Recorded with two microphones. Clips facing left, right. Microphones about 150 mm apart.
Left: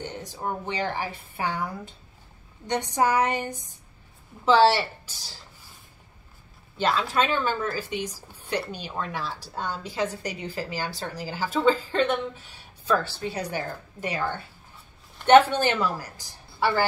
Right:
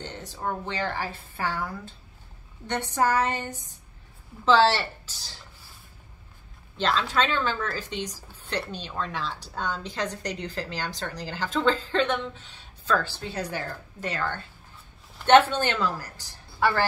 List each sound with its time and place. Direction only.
0.0 s a woman's voice: 15° left (ahead or behind)
6.8 s a woman's voice: 10° left (ahead or behind)